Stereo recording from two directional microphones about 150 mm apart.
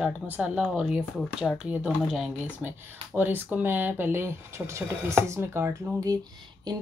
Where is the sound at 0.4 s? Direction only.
5° right (ahead or behind).